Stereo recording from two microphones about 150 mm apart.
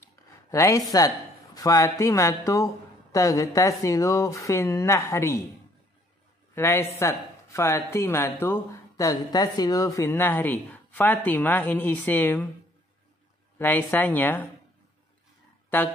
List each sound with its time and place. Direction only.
0.5 s speech: 20° left (ahead or behind)
6.5 s speech: 15° left (ahead or behind)
13.6 s speech: 15° left (ahead or behind)